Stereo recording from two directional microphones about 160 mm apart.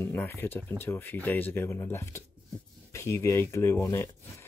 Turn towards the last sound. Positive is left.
turn(degrees=15)  # may be behind; listen again after turning